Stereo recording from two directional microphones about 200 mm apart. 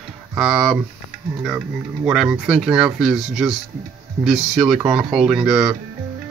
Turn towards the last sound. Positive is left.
turn(degrees=-5)  # may be behind; listen again after turning